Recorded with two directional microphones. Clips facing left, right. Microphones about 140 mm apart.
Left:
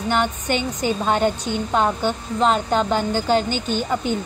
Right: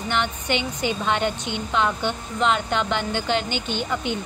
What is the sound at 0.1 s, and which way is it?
A woman's voice, 45° left (ahead or behind).